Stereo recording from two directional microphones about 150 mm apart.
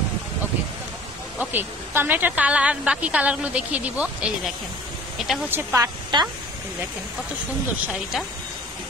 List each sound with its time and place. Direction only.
1.4 s a woman's voice: 15° right (ahead or behind)
5.5 s a woman's voice: 15° right (ahead or behind)
6.1 s speech: 30° right (ahead or behind)